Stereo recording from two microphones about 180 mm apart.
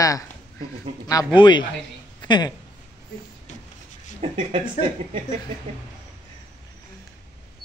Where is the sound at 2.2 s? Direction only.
25° left (ahead or behind).